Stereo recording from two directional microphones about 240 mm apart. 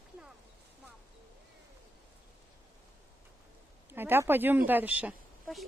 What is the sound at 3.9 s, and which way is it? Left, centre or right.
Speech, centre.